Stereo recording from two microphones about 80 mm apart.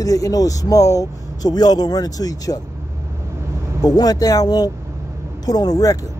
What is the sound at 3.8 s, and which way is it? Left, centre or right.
Speech, left.